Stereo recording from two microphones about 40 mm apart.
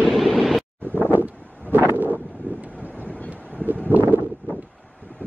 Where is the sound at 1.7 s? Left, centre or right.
Right.